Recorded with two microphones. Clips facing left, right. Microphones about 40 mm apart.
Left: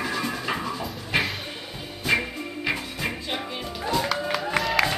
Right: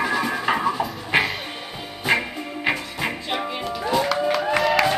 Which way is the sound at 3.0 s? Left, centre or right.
Right.